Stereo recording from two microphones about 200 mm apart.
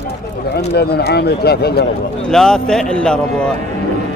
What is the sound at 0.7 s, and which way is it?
Speech, 55° left (ahead or behind).